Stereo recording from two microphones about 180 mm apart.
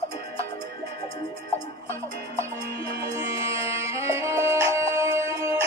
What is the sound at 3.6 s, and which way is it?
Music, 15° right (ahead or behind).